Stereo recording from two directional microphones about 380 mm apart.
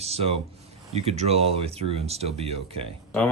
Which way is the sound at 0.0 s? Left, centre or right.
Centre.